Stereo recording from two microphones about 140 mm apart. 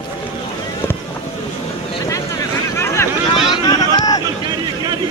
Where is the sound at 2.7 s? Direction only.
20° left (ahead or behind).